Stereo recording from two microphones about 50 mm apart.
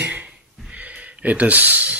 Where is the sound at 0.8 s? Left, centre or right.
Right.